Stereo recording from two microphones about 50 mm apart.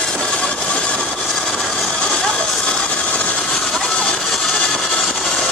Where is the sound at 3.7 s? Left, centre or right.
Centre.